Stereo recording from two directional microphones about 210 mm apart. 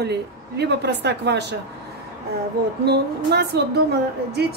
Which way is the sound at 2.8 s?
50° right (ahead or behind).